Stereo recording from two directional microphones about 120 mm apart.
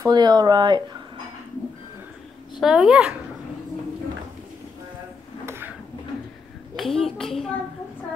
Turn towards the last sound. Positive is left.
turn(degrees=0)  # may be behind; listen again after turning